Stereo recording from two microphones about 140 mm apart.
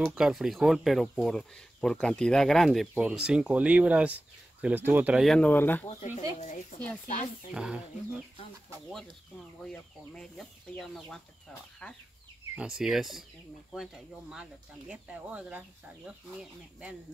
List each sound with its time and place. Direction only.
0.0 s speech: 5° right (ahead or behind)
2.9 s speech: 10° right (ahead or behind)
5.2 s speech: 5° left (ahead or behind)
5.5 s speech: 15° left (ahead or behind)
6.4 s speech: 60° left (ahead or behind)
7.5 s speech: 5° right (ahead or behind)
9.6 s speech: 5° left (ahead or behind)
12.5 s speech: 5° right (ahead or behind)